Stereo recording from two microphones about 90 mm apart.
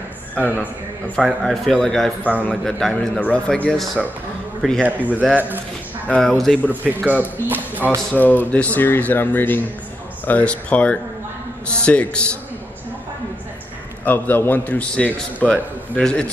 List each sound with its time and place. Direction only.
0.4 s a man's voice: 15° right (ahead or behind)
1.1 s a man's voice: 5° left (ahead or behind)
2.9 s a man's voice: 15° left (ahead or behind)
4.8 s a man's voice: 20° right (ahead or behind)
6.1 s a man's voice: centre (ahead or behind)
7.4 s speech: 20° right (ahead or behind)
8.1 s a man's voice: 20° left (ahead or behind)
14.0 s a man's voice: 20° left (ahead or behind)